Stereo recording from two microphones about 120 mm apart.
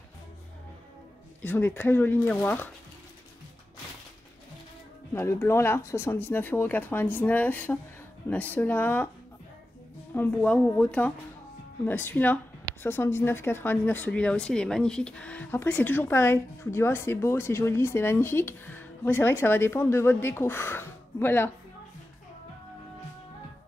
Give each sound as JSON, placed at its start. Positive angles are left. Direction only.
{"t": 1.4, "sound": "speech", "side_deg": 15}
{"t": 5.1, "sound": "speech", "side_deg": 20}
{"t": 10.1, "sound": "speech", "side_deg": 15}